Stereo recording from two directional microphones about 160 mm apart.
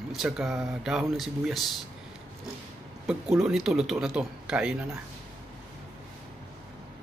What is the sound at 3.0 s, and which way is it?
Speech, 5° right (ahead or behind).